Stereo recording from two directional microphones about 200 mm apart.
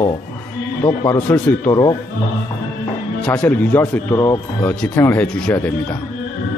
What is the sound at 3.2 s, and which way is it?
A man's voice, 5° left (ahead or behind).